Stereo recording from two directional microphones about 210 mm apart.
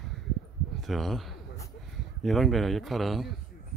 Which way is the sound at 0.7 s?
Centre (ahead or behind).